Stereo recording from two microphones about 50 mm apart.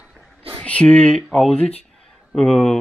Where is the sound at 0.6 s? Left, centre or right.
Left.